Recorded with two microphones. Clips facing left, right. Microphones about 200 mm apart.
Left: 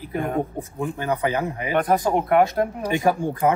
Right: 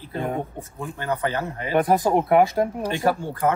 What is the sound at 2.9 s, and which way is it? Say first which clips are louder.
Speech: left 2 dB; 15° left (ahead or behind).